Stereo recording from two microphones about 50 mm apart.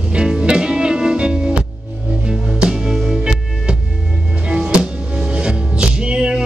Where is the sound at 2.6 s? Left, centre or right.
Centre.